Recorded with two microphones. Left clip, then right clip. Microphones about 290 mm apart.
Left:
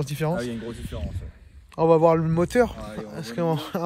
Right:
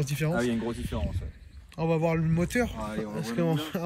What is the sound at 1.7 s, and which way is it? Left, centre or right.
Speech, centre.